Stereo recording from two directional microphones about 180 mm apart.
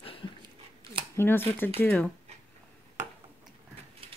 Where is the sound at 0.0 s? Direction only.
30° left (ahead or behind).